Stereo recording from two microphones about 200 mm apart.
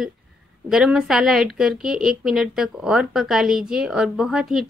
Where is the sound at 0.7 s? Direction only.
5° right (ahead or behind).